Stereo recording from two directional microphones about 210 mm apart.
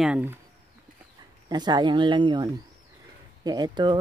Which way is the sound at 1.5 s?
20° right (ahead or behind).